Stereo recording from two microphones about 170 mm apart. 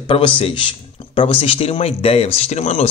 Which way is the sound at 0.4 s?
35° left (ahead or behind).